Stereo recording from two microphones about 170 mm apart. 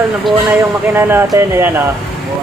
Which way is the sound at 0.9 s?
15° right (ahead or behind).